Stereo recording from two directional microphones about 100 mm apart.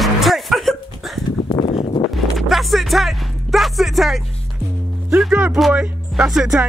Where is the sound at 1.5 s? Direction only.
55° left (ahead or behind).